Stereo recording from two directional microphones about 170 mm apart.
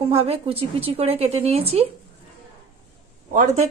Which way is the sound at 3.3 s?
40° right (ahead or behind).